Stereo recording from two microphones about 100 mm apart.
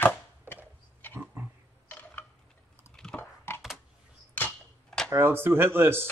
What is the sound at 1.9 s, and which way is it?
Tick-tock, 20° left (ahead or behind).